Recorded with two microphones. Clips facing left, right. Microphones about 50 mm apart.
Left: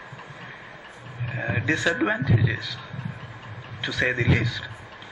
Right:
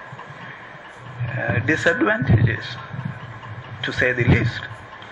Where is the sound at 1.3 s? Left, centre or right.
Centre.